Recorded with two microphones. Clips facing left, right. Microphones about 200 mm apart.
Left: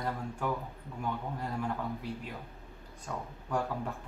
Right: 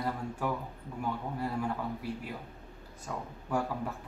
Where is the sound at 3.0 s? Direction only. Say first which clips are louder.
Even; 10° right (ahead or behind).